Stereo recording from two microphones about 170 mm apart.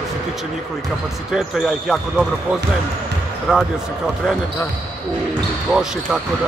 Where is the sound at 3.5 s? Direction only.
5° right (ahead or behind).